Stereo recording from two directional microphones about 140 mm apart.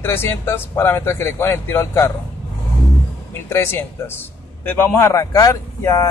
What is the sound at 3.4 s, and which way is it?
Speech, 15° left (ahead or behind).